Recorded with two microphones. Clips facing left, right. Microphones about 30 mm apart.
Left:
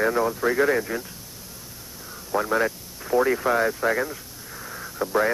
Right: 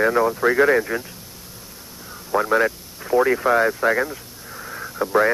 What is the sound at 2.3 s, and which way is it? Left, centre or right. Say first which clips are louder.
Speech: right 4 dB; centre.